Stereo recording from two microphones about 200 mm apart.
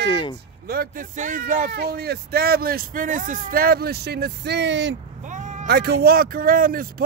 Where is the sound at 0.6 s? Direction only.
50° right (ahead or behind).